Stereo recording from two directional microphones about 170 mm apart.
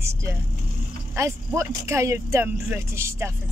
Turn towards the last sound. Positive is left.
turn(degrees=-15)  # may be behind; listen again after turning